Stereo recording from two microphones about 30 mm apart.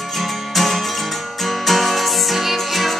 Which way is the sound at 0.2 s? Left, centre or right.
Centre.